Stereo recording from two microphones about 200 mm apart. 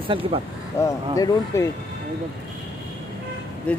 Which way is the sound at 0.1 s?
30° right (ahead or behind).